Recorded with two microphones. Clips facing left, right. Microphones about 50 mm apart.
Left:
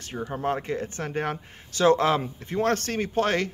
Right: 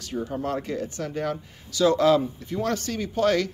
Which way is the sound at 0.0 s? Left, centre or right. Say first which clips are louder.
Even; left.